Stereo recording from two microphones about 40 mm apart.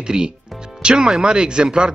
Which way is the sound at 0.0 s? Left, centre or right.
Centre.